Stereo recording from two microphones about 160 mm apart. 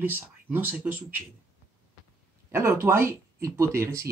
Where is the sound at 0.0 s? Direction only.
10° right (ahead or behind).